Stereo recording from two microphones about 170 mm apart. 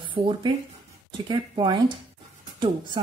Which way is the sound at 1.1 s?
30° right (ahead or behind).